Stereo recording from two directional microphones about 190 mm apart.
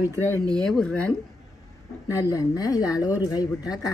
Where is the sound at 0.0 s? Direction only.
15° left (ahead or behind).